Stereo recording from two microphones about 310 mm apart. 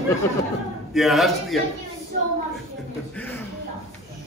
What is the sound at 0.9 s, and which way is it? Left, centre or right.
Speech, centre.